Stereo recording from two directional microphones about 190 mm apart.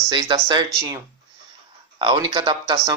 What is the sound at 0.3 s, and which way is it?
Speech, 25° right (ahead or behind).